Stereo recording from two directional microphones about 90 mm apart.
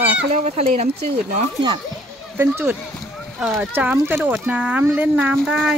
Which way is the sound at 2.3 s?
20° right (ahead or behind).